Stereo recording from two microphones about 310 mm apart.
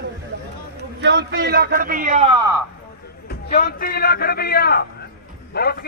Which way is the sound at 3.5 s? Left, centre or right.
Left.